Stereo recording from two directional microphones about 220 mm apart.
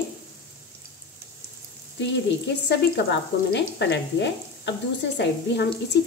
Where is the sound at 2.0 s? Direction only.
50° left (ahead or behind).